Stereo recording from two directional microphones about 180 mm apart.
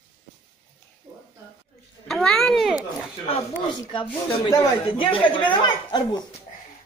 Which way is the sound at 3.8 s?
30° left (ahead or behind).